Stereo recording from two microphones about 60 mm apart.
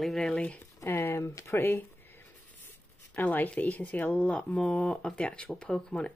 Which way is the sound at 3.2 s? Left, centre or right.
Left.